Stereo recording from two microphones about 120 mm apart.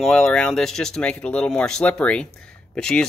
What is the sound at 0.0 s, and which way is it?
Speech, 5° left (ahead or behind).